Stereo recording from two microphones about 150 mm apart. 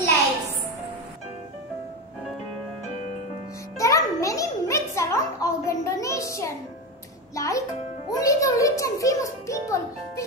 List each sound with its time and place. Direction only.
3.7 s music: 20° left (ahead or behind)
7.3 s a child's voice: 20° left (ahead or behind)